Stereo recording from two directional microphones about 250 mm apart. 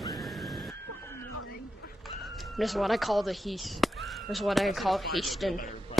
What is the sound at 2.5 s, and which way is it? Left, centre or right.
Speech, centre.